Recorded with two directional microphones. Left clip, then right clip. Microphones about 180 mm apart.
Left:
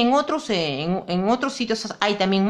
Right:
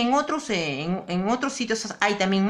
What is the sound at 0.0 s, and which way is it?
A woman's voice, 30° left (ahead or behind).